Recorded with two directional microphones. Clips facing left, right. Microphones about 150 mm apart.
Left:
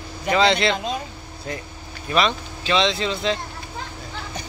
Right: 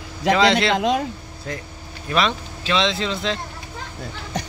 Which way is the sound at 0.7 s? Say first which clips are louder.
Right 7 dB; 90° right.